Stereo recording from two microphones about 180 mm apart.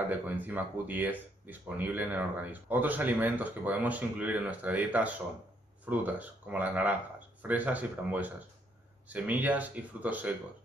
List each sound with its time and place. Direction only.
0.1 s speech: 10° right (ahead or behind)